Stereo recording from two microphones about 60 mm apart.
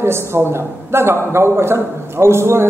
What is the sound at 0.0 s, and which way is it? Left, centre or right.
A man's voice, right.